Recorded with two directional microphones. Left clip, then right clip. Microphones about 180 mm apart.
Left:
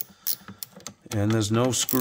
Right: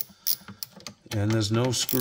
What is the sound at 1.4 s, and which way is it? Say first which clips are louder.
Speech: left 2 dB; 55° left (ahead or behind).